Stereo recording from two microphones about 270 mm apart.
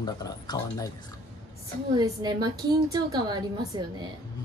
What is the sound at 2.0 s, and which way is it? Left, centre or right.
A woman's voice, centre.